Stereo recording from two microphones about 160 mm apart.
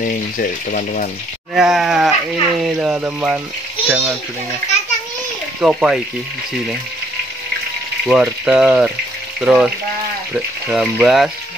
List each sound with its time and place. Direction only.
0.0 s speech: 60° left (ahead or behind)
1.5 s a child's voice: centre (ahead or behind)
5.6 s speech: 5° right (ahead or behind)
8.1 s speech: 5° right (ahead or behind)